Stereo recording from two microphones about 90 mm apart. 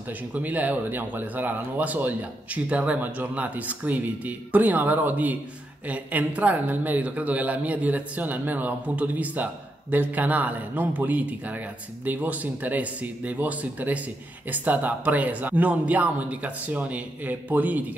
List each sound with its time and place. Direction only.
0.3 s speech: 15° right (ahead or behind)